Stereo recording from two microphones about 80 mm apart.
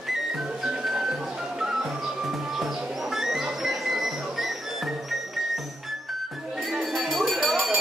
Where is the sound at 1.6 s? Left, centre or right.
Centre.